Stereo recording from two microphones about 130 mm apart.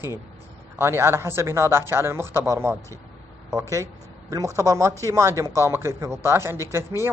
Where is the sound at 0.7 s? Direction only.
20° right (ahead or behind).